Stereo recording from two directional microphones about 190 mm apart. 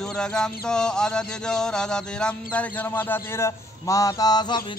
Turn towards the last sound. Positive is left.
turn(degrees=20)  # may be behind; listen again after turning